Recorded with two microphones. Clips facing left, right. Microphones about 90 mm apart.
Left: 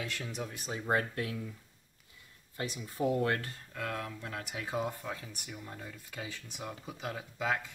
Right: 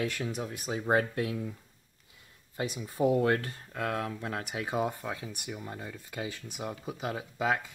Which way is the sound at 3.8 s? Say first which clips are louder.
Right 6 dB; 55° right (ahead or behind).